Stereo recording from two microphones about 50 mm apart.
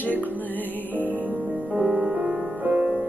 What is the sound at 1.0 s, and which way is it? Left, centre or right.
Music, right.